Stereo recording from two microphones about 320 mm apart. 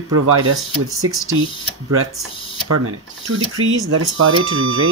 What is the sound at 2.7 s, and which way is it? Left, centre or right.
Speech, right.